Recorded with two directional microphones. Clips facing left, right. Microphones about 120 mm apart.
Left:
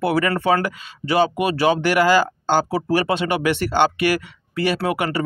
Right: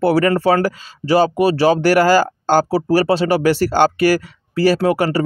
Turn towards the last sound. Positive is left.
turn(degrees=-30)  # may be behind; listen again after turning